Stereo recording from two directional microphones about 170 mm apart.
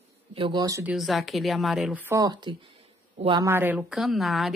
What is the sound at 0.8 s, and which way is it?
Speech, centre (ahead or behind).